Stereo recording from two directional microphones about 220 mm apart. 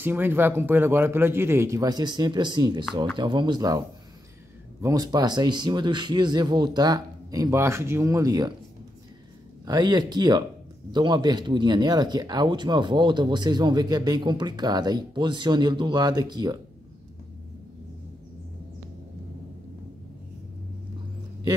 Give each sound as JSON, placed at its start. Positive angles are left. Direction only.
{"t": 0.0, "sound": "a man's voice", "side_deg": -10}
{"t": 4.8, "sound": "speech", "side_deg": -15}
{"t": 9.7, "sound": "a man's voice", "side_deg": -20}